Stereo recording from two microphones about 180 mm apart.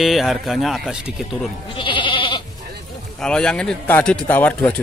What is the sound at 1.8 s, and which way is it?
Goat, 30° left (ahead or behind).